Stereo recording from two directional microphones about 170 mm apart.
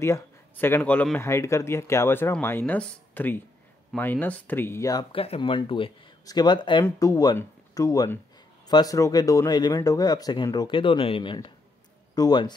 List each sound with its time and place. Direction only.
0.0 s speech: 15° left (ahead or behind)
5.1 s speech: 35° left (ahead or behind)